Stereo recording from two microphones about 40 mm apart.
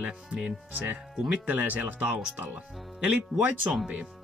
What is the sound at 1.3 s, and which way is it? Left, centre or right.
Speech, right.